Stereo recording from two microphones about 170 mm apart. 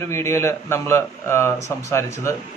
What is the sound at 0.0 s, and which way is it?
A man's voice, 15° left (ahead or behind).